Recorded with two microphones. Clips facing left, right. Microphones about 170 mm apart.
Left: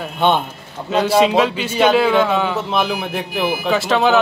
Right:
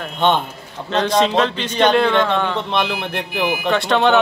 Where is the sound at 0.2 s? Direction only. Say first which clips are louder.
Left 1 dB; 10° left (ahead or behind).